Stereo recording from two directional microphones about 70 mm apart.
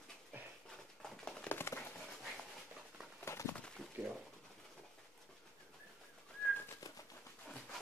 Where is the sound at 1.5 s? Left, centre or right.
Left.